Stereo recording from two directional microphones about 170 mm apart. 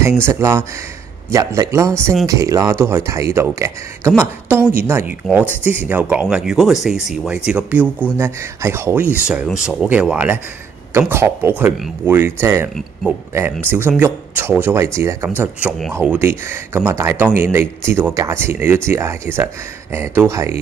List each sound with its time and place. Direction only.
0.0 s speech: 15° right (ahead or behind)
13.7 s speech: 10° right (ahead or behind)